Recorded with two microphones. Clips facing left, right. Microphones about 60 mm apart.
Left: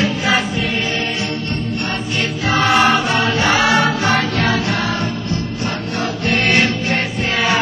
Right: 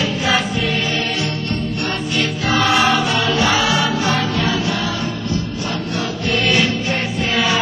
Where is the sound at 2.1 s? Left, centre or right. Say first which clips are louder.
Even; left.